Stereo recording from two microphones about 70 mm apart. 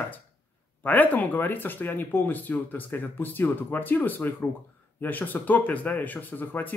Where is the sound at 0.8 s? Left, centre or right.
Left.